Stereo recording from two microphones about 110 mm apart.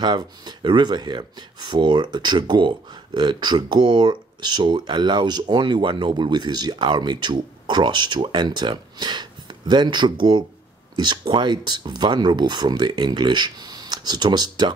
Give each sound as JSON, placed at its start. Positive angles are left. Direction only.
{"t": 0.0, "sound": "speech", "side_deg": -40}